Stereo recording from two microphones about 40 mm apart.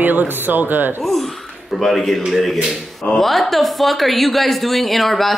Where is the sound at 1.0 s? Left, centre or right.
Centre.